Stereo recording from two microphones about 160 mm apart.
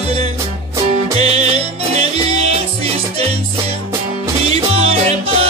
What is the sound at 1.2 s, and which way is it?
Music, 40° right (ahead or behind).